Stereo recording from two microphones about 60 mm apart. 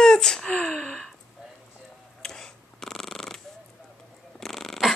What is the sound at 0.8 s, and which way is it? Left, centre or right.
Gasp, centre.